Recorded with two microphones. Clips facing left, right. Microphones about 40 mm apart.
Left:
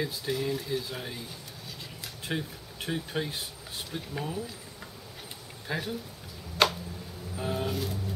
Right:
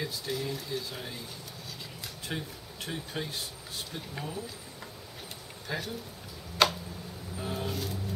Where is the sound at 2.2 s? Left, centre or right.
Centre.